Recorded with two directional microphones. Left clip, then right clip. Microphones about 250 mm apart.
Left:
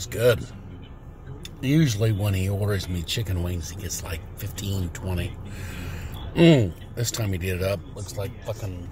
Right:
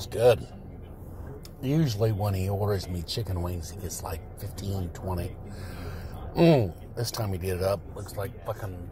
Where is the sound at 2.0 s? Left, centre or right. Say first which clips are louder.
Left 1 dB; left.